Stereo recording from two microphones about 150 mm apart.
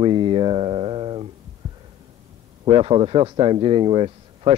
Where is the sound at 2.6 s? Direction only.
35° right (ahead or behind).